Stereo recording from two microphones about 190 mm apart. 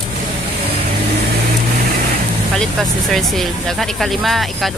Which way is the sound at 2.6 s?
Centre (ahead or behind).